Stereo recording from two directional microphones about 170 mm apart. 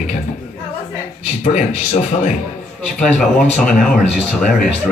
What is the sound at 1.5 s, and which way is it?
Speech, 45° left (ahead or behind).